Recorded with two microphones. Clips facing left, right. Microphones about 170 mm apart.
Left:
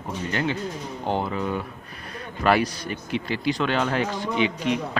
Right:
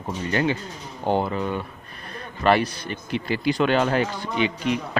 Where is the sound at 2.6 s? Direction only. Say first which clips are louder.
Left 1 dB; 60° right (ahead or behind).